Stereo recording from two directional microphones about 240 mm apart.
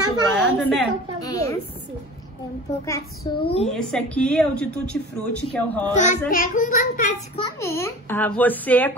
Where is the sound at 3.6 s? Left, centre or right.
Centre.